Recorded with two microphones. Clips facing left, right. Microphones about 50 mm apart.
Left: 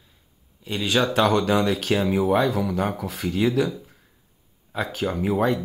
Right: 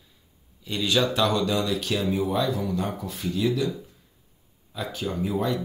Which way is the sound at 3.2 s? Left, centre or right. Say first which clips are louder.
Left 4 dB; left.